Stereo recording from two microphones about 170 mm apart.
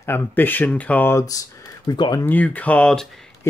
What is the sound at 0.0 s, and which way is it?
Speech, 10° left (ahead or behind).